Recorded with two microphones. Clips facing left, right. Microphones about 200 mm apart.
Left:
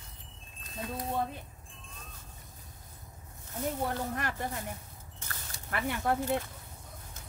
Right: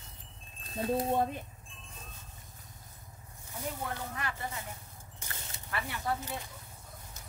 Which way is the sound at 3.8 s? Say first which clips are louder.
Left 5 dB; 50° left (ahead or behind).